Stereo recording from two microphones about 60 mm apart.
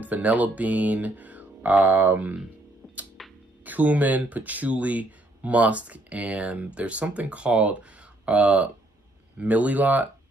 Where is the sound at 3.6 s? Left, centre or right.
Right.